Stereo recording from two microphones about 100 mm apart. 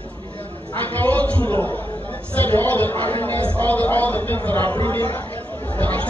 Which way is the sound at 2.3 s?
20° left (ahead or behind).